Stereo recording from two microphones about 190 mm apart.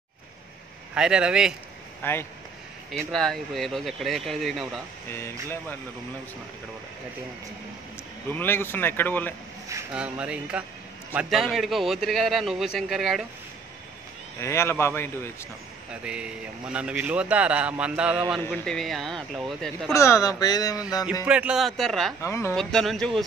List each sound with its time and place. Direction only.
0.9 s speech: 5° right (ahead or behind)
2.0 s speech: 10° left (ahead or behind)
5.1 s speech: 15° left (ahead or behind)
8.3 s speech: 10° left (ahead or behind)
9.7 s speech: 10° right (ahead or behind)
14.4 s speech: 15° left (ahead or behind)
15.9 s speech: 5° right (ahead or behind)
18.4 s speech: 5° left (ahead or behind)
19.9 s speech: 15° left (ahead or behind)
21.3 s speech: 5° right (ahead or behind)
22.2 s speech: 15° left (ahead or behind)
22.6 s speech: 5° left (ahead or behind)